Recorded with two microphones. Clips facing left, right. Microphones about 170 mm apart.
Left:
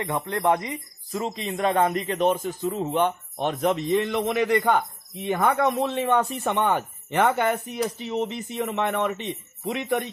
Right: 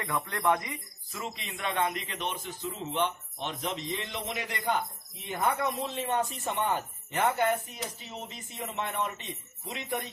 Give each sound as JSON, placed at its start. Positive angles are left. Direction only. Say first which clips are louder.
{"t": 0.0, "sound": "speech", "louder": "left 5 dB", "side_deg": 25}